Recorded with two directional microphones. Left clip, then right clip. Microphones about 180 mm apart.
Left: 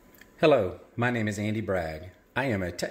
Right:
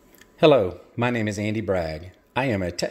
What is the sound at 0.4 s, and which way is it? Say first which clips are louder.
A man's voice: right 5 dB; 35° right (ahead or behind).